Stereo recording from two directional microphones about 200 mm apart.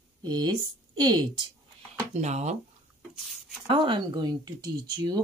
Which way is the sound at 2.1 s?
35° right (ahead or behind).